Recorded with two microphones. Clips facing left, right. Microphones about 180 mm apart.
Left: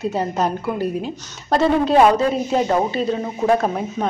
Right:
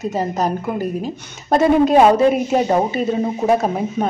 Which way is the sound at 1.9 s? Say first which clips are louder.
Right 2 dB; 15° right (ahead or behind).